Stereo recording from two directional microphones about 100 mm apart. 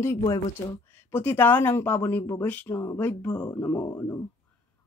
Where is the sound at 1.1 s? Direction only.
20° left (ahead or behind).